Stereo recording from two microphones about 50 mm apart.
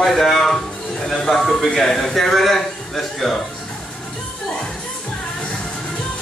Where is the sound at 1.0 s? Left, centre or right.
Centre.